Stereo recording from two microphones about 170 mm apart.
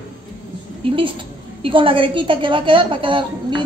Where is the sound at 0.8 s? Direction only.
30° right (ahead or behind).